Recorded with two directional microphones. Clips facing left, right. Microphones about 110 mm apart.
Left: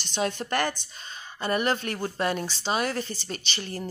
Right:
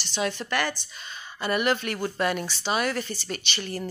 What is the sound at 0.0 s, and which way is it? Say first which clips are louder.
Speech: even; 50° left (ahead or behind).